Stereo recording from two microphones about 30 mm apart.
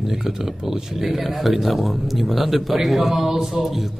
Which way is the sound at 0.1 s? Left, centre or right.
Centre.